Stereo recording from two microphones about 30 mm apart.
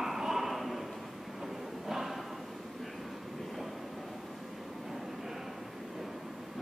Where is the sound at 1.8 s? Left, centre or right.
Centre.